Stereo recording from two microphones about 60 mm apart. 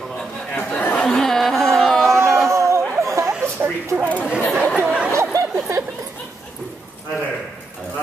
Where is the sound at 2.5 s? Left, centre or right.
Right.